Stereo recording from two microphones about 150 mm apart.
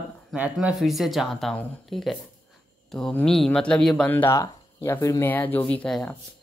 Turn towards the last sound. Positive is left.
turn(degrees=5)  # may be behind; listen again after turning